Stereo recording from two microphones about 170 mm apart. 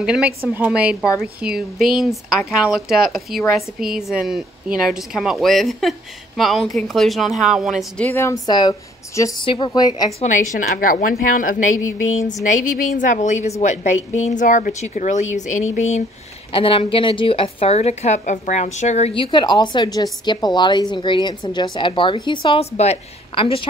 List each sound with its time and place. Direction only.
0.0 s a woman's voice: 5° right (ahead or behind)
8.0 s a woman's voice: 15° left (ahead or behind)
10.2 s a woman's voice: 45° left (ahead or behind)
16.5 s a woman's voice: 30° left (ahead or behind)